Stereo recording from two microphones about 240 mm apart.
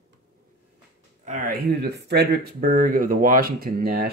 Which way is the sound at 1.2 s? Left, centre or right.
Right.